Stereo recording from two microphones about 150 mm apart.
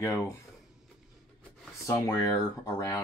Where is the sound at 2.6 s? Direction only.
20° left (ahead or behind).